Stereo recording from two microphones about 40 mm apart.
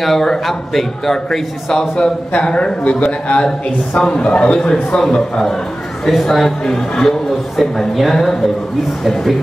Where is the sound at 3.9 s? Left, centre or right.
Left.